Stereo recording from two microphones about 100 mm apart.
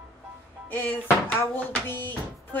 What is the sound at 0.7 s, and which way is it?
A woman's voice, 20° left (ahead or behind).